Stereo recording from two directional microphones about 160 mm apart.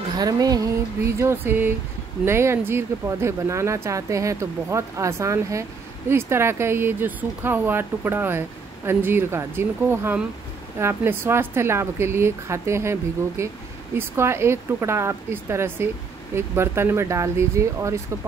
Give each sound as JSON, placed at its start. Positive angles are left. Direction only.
{"t": 0.2, "sound": "speech", "side_deg": -25}